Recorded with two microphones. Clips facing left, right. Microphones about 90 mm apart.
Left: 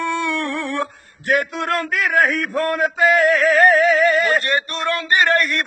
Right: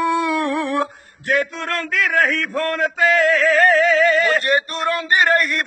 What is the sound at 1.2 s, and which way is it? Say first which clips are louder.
Speech: left 1 dB; 50° left (ahead or behind).